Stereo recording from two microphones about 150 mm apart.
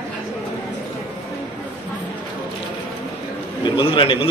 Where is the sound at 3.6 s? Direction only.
30° left (ahead or behind).